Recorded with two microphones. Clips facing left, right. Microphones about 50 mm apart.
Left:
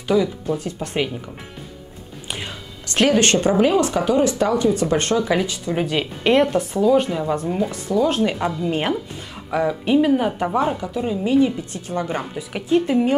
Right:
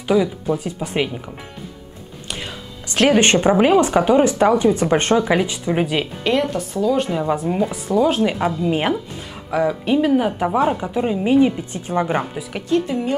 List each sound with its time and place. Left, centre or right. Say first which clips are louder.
0.1 s speech: right 2 dB; centre
3.1 s speech: right 3 dB; right
6.2 s speech: left 5 dB; centre
7.1 s speech: right 2 dB; centre
9.5 s speech: even; centre
10.8 s speech: right 3 dB; right
12.6 s speech: left 3 dB; centre